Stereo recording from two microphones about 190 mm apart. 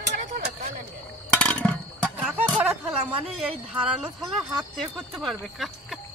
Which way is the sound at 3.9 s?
Centre (ahead or behind).